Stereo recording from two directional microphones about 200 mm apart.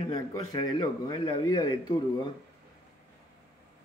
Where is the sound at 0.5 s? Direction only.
20° left (ahead or behind).